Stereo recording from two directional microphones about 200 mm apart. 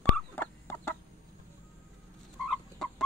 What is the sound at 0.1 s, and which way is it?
Fowl, 10° left (ahead or behind).